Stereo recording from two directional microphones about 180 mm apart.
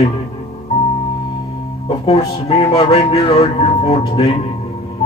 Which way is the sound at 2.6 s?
35° left (ahead or behind).